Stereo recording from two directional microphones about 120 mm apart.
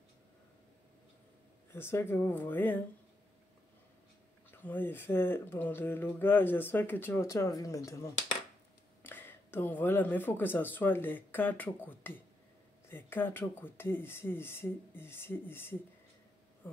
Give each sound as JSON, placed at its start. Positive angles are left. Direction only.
{"t": 1.7, "sound": "speech", "side_deg": 20}
{"t": 4.5, "sound": "speech", "side_deg": 15}